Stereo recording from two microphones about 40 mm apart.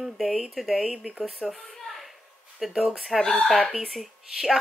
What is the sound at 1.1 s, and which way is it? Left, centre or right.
Speech, right.